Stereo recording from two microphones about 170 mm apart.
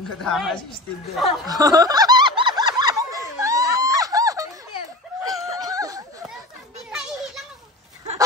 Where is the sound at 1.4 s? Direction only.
20° right (ahead or behind).